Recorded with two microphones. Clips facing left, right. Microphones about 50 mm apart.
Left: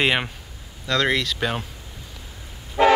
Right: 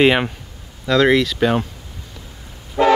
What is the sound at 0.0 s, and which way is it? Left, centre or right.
Speech, centre.